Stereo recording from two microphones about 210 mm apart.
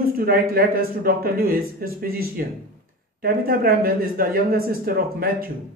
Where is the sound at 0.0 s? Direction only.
45° right (ahead or behind).